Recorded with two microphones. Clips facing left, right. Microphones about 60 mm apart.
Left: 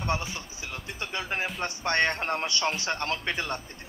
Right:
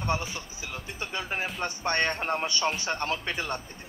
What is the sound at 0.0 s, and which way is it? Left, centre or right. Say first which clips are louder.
Speech: even; right.